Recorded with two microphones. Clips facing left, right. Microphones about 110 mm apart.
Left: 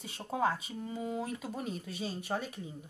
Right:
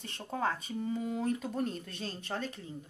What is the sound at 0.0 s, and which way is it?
Speech, 5° left (ahead or behind).